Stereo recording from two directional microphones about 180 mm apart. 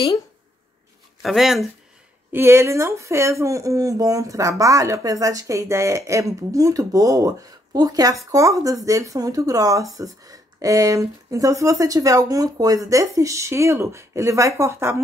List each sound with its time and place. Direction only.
1.2 s speech: centre (ahead or behind)
2.3 s speech: 15° right (ahead or behind)